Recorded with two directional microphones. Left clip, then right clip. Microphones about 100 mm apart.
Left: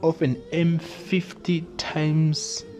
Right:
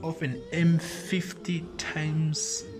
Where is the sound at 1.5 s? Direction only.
45° left (ahead or behind).